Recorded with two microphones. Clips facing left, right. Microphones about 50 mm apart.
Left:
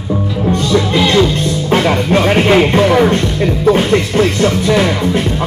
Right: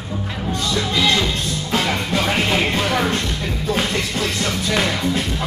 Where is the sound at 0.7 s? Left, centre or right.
Left.